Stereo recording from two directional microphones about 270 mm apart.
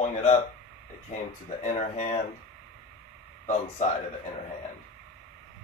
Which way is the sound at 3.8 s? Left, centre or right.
Left.